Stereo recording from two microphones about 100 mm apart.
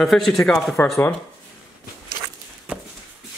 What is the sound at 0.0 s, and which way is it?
Speech, centre (ahead or behind).